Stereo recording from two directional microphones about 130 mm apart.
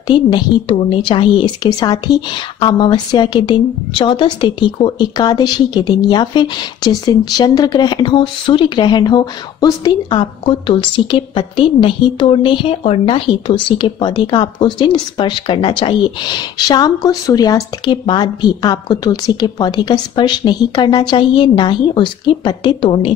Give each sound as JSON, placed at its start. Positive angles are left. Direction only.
{"t": 0.1, "sound": "speech", "side_deg": 35}